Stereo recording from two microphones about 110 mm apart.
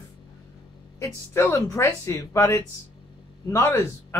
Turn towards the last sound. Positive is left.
turn(degrees=25)  # may be behind; listen again after turning